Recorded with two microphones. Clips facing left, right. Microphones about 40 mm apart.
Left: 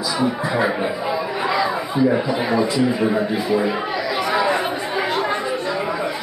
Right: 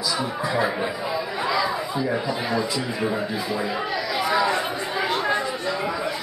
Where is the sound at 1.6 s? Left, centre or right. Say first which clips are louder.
Left 5 dB; left.